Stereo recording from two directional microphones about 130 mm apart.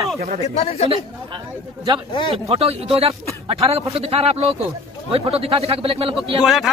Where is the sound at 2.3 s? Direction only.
45° right (ahead or behind).